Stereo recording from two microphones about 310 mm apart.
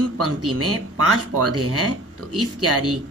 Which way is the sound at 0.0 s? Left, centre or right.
Right.